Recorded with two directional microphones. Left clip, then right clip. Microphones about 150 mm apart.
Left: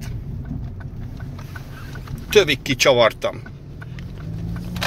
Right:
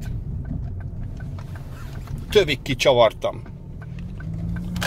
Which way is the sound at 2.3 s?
20° right (ahead or behind).